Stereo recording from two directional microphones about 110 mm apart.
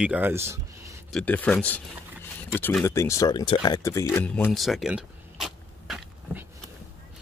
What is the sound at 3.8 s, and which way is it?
Speech, 30° left (ahead or behind).